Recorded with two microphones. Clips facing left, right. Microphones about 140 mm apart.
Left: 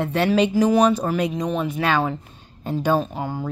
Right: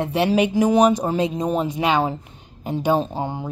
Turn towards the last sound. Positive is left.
turn(degrees=-25)  # may be behind; listen again after turning